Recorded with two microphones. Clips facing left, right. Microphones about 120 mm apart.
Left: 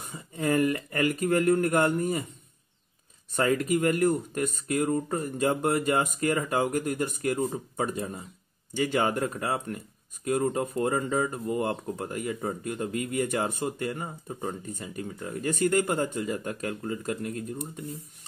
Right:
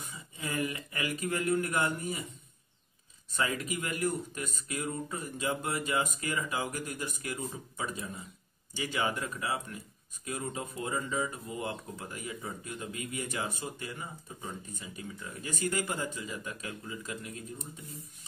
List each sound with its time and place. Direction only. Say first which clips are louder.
0.1 s speech: left 12 dB; 50° left (ahead or behind)
3.3 s speech: left 9 dB; 50° left (ahead or behind)